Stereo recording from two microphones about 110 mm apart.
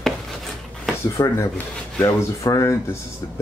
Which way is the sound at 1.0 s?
30° left (ahead or behind).